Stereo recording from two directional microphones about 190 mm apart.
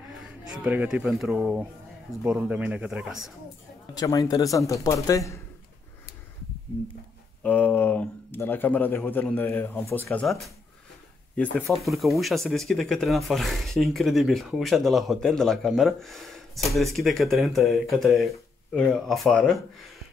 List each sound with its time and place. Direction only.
0.5 s speech: 5° right (ahead or behind)
3.9 s a man's voice: 20° left (ahead or behind)
7.4 s a man's voice: 10° left (ahead or behind)
10.2 s speech: centre (ahead or behind)
11.5 s speech: centre (ahead or behind)